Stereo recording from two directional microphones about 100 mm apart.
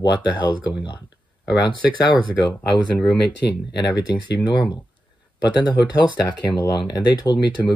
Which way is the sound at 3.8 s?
40° left (ahead or behind).